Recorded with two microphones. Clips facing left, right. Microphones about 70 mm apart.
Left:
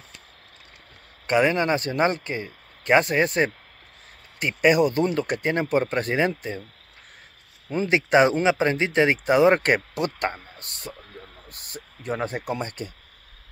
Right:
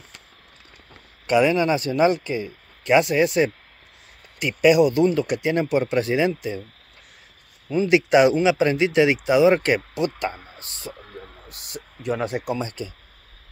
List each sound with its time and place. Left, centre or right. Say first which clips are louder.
1.2 s speech: right 2 dB; left
7.7 s speech: right 3 dB; left
10.3 s speech: even; centre
10.6 s speech: right 1 dB; left
11.4 s speech: right 3 dB; left